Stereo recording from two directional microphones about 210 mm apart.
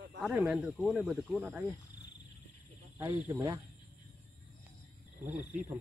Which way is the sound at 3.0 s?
10° right (ahead or behind).